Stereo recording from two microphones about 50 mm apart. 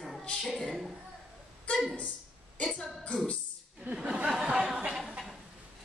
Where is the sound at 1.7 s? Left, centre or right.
Left.